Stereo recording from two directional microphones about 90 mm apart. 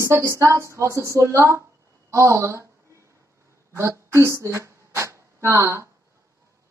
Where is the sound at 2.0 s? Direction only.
35° right (ahead or behind).